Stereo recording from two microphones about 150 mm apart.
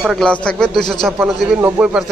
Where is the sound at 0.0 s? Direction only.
5° left (ahead or behind).